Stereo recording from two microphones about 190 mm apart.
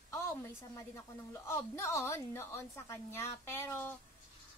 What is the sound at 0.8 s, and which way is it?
A woman's voice, 15° left (ahead or behind).